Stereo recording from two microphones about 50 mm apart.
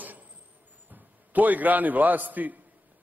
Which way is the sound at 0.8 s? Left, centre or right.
Right.